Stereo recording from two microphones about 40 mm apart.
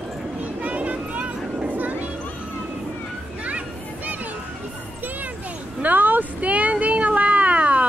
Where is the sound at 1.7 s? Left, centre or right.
Right.